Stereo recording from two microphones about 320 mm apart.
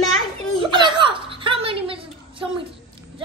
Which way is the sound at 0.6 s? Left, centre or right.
Centre.